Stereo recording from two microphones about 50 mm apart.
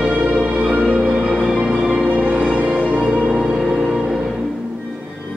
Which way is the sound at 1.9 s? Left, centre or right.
Right.